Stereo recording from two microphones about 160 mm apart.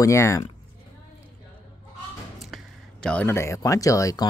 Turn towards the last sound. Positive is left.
turn(degrees=20)  # may be behind; listen again after turning